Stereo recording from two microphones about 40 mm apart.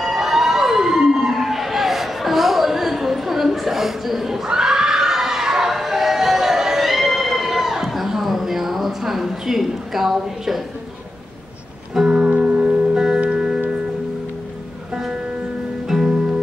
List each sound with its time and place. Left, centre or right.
0.0 s emergency vehicle: centre
1.3 s a sound: centre
11.9 s music: centre
12.2 s music: right
12.9 s music: centre
15.9 s music: centre